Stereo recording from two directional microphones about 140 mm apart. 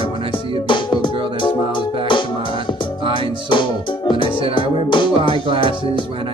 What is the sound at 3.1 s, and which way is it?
Music, 35° left (ahead or behind).